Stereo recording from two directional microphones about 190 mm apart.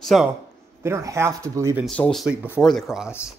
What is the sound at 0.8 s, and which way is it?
Speech, 15° right (ahead or behind).